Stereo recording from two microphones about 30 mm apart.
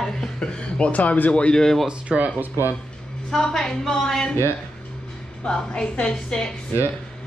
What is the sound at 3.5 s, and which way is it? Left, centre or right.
Speech, centre.